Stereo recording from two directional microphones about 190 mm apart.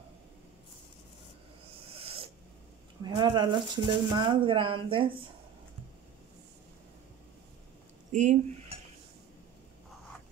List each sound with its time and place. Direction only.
1.9 s owl: 30° right (ahead or behind)
3.0 s speech: 25° right (ahead or behind)
8.1 s speech: 40° right (ahead or behind)